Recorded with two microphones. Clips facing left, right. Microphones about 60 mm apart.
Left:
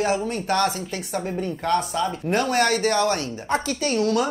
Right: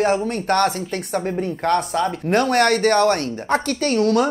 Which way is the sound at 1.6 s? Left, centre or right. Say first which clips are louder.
Right 3 dB; right.